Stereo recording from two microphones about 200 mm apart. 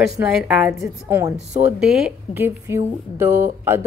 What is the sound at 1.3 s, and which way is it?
A woman's voice, centre (ahead or behind).